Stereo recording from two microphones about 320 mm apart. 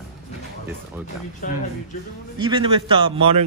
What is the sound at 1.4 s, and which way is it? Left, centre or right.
Speech, left.